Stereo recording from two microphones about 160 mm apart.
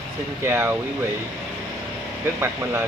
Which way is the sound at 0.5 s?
15° right (ahead or behind).